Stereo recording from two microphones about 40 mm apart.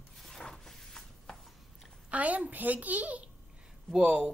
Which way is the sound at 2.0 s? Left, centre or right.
Right.